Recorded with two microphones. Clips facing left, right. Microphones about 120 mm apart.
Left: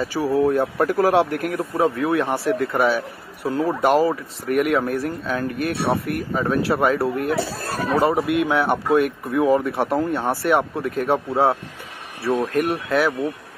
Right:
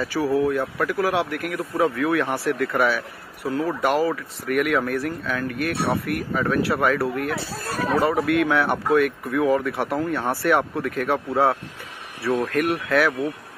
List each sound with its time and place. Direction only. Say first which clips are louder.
0.0 s speech: left 2 dB; 25° left (ahead or behind)